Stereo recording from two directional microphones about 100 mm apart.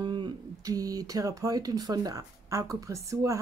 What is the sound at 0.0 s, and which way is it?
Speech, 45° right (ahead or behind).